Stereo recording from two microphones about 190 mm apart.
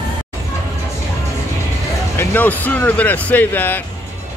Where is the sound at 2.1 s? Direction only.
10° left (ahead or behind).